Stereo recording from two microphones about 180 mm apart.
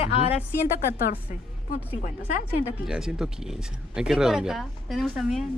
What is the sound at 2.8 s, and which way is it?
Speech, 5° right (ahead or behind).